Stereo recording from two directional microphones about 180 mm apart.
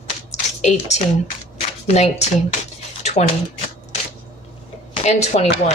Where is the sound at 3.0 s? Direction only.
40° left (ahead or behind).